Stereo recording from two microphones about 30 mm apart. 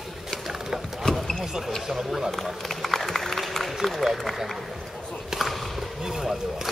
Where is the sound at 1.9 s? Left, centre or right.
Centre.